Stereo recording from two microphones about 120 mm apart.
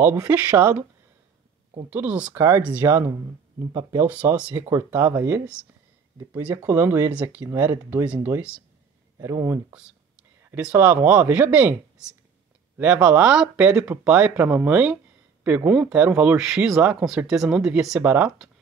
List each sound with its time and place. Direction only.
0.0 s speech: 20° right (ahead or behind)
1.9 s speech: 15° right (ahead or behind)
4.0 s speech: 15° right (ahead or behind)
6.4 s speech: 15° right (ahead or behind)
9.2 s speech: 25° right (ahead or behind)
12.7 s speech: 15° right (ahead or behind)